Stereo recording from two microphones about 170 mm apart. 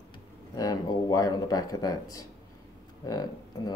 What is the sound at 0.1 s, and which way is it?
Speech, 25° left (ahead or behind).